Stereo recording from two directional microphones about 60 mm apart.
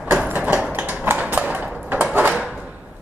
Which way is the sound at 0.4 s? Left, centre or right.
Centre.